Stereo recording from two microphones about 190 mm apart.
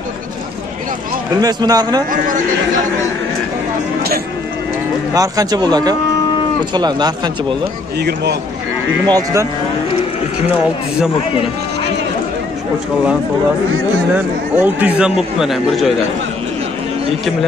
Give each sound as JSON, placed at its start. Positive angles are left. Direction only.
{"t": 1.4, "sound": "speech", "side_deg": -20}
{"t": 5.1, "sound": "speech", "side_deg": -20}
{"t": 8.0, "sound": "a man's voice", "side_deg": -60}
{"t": 9.1, "sound": "speech", "side_deg": -15}
{"t": 14.1, "sound": "speech", "side_deg": -10}